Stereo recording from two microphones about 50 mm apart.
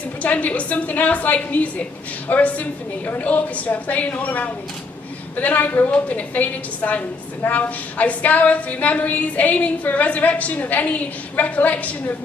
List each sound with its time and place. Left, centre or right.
0.2 s a woman's voice: left